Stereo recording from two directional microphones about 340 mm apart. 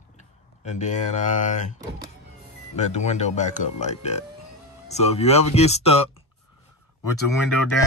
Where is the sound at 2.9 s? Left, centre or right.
Centre.